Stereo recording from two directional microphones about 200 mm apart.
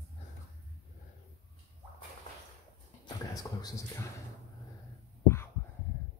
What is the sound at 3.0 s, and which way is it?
Speech, 20° left (ahead or behind).